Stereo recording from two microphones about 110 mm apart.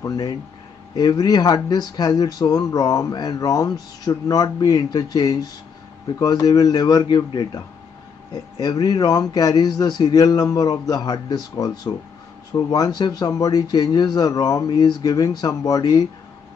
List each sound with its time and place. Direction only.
0.0 s speech: 35° left (ahead or behind)